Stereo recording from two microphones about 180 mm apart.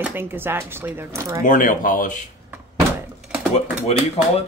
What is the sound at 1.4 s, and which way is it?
Speech, 50° left (ahead or behind).